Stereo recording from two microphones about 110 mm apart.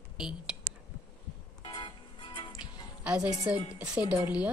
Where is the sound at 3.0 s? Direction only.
10° right (ahead or behind).